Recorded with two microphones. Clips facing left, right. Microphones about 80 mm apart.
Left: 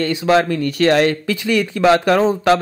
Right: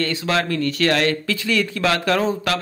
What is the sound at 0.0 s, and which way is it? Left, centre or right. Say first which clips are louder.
Speech: left 6 dB; left.